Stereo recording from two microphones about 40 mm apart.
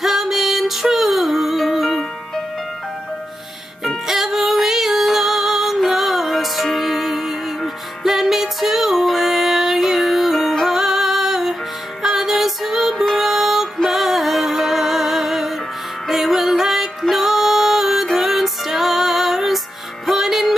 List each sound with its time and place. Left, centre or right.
0.0 s music: centre
4.1 s music: centre
12.9 s music: centre
13.2 s music: centre